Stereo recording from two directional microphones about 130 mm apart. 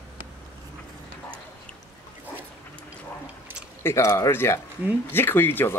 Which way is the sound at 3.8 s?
20° left (ahead or behind).